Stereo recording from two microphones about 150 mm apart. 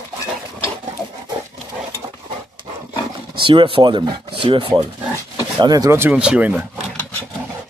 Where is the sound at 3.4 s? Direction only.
35° right (ahead or behind); by 6.6 s 10° right (ahead or behind).